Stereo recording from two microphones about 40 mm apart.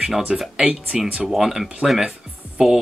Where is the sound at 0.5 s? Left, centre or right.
Right.